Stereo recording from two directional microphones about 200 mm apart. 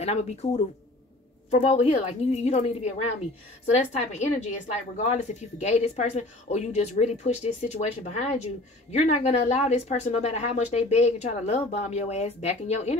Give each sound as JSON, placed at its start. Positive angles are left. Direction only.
{"t": 0.0, "sound": "speech", "side_deg": 30}
{"t": 1.5, "sound": "speech", "side_deg": 30}